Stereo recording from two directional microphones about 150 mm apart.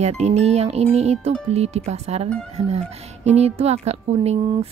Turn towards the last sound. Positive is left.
turn(degrees=-45)  # may be behind; listen again after turning